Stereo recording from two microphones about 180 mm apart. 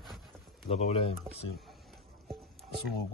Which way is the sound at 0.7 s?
35° left (ahead or behind).